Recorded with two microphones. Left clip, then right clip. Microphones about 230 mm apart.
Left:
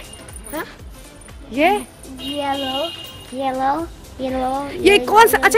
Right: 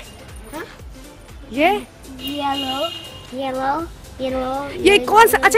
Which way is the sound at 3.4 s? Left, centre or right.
Centre.